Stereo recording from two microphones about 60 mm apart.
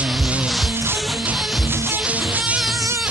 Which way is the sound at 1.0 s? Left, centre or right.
Centre.